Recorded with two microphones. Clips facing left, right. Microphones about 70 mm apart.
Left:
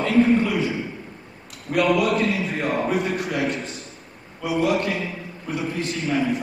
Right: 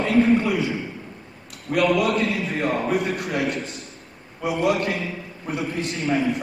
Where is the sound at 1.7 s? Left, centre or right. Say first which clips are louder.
Even; centre.